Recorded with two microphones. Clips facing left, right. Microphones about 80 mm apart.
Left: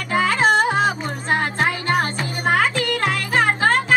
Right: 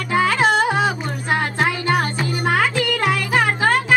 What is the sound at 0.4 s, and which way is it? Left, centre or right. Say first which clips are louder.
Music: even; centre.